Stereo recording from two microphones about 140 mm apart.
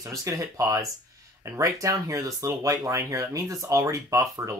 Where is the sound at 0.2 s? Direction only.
25° right (ahead or behind).